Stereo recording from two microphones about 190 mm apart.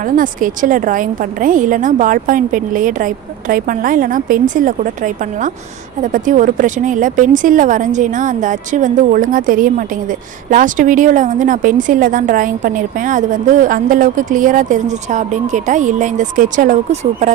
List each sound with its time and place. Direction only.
0.0 s a woman's voice: 45° right (ahead or behind)